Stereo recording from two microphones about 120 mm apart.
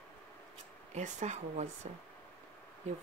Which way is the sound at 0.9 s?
75° right (ahead or behind).